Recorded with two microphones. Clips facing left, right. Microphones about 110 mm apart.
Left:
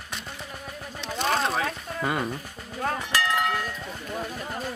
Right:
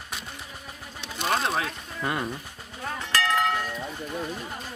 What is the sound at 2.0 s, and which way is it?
Speech, centre (ahead or behind).